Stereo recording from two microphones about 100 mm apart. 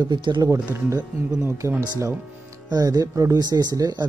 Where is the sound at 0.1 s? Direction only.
50° right (ahead or behind).